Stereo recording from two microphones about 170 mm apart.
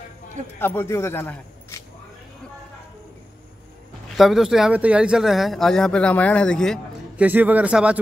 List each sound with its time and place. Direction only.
0.6 s speech: 15° left (ahead or behind)
4.2 s speech: centre (ahead or behind)
7.2 s a man's voice: 10° right (ahead or behind)